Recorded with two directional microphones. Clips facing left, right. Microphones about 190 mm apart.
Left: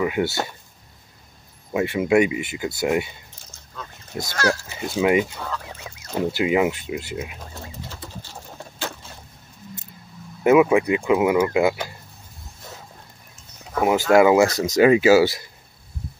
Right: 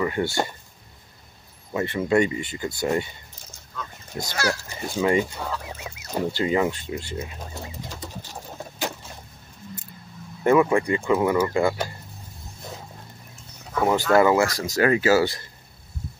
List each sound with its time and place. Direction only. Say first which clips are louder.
0.0 s speech: left 2 dB; 10° left (ahead or behind)
1.7 s speech: left 3 dB; 10° left (ahead or behind)
4.3 s a child's voice: left 3 dB; 10° right (ahead or behind)
4.6 s speech: left 3 dB; 10° left (ahead or behind)
5.4 s fowl: right 1 dB; 10° right (ahead or behind)
6.3 s speech: left 3 dB; 10° left (ahead or behind)
7.5 s bird: right 1 dB; 15° right (ahead or behind)
10.4 s speech: left 3 dB; 5° left (ahead or behind)
13.7 s speech: left 3 dB; 15° left (ahead or behind)